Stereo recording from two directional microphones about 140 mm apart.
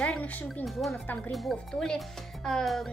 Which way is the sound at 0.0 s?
10° left (ahead or behind).